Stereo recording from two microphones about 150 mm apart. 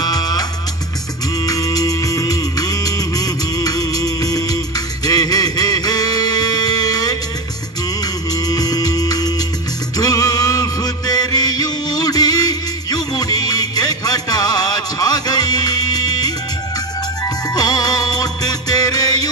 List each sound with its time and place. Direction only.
0.0 s music: 25° left (ahead or behind)
17.6 s music: 25° left (ahead or behind)